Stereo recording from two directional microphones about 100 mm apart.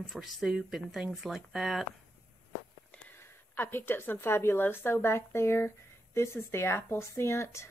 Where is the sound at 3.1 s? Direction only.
20° left (ahead or behind).